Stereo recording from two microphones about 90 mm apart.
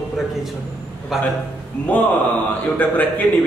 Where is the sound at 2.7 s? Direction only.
20° left (ahead or behind).